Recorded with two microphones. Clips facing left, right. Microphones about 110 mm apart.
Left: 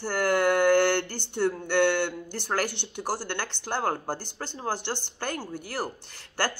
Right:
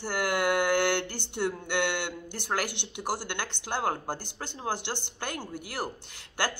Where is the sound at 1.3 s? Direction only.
15° right (ahead or behind).